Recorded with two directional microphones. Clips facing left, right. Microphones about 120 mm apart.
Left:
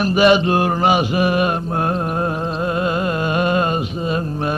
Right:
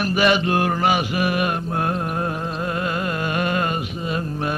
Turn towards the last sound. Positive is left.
turn(degrees=30)  # may be behind; listen again after turning